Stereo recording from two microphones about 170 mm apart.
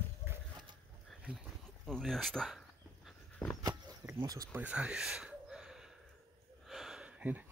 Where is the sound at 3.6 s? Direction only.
20° right (ahead or behind).